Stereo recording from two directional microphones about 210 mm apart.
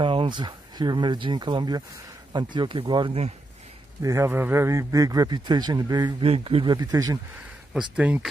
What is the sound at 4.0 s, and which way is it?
Speech, 15° right (ahead or behind).